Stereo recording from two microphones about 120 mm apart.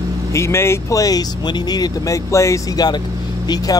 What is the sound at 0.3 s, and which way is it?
Speech, 20° left (ahead or behind).